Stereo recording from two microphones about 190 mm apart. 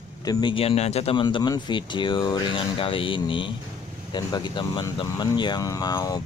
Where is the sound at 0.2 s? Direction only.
20° left (ahead or behind).